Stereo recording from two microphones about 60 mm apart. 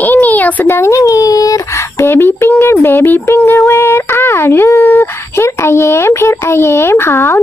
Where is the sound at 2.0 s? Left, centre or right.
Left.